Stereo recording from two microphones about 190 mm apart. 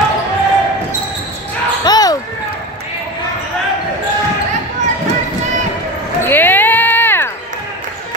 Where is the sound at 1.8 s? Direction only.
20° left (ahead or behind).